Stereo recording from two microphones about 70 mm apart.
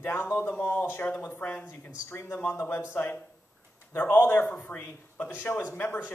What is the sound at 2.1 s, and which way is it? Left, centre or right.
Speech, left.